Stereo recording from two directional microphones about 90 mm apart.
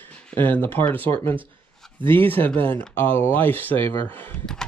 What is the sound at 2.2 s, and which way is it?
Speech, 20° left (ahead or behind).